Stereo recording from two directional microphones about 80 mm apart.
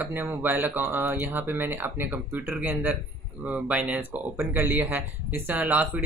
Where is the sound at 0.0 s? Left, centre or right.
Right.